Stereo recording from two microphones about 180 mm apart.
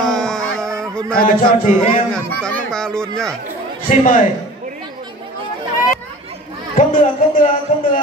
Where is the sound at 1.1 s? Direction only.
50° left (ahead or behind).